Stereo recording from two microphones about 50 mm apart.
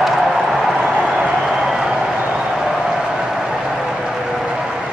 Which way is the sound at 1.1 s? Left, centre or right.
Right.